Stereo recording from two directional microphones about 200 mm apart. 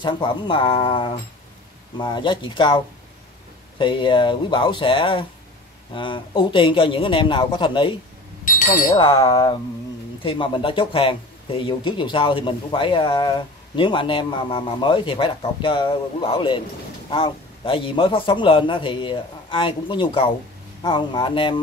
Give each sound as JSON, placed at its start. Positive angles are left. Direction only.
{"t": 0.0, "sound": "speech", "side_deg": 25}
{"t": 8.9, "sound": "speech", "side_deg": 20}